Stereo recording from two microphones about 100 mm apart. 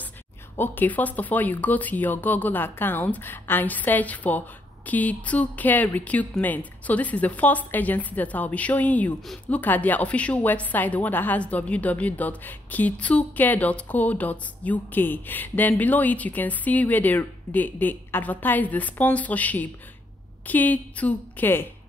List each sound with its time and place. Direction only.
0.6 s a woman's voice: 20° left (ahead or behind)